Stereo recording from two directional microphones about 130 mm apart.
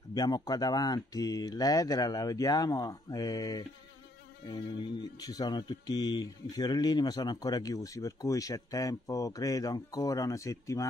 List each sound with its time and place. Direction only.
0.1 s speech: 30° left (ahead or behind)